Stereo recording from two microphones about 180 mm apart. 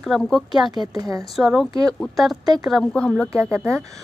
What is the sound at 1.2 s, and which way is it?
A woman's voice, centre (ahead or behind).